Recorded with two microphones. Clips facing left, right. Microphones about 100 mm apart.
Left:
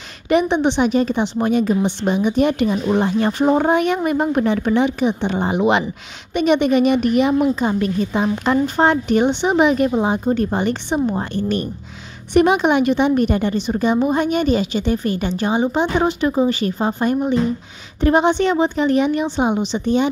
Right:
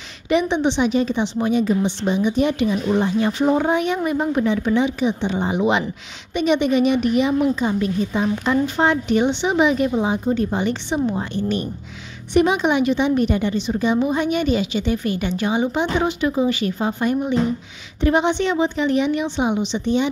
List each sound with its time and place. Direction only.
0.3 s a woman's voice: 50° left (ahead or behind)